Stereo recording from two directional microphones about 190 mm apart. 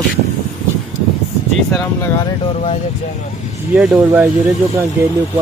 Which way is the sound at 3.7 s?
5° right (ahead or behind).